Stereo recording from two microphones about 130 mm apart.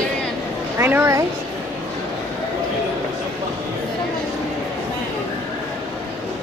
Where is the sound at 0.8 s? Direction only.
20° right (ahead or behind).